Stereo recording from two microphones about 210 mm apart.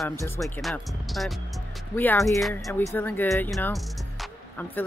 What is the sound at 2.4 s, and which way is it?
Speech, centre (ahead or behind).